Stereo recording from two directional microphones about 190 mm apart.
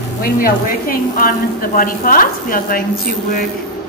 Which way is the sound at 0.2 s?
50° left (ahead or behind).